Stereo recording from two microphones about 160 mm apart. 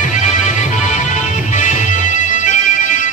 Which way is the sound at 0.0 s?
50° left (ahead or behind).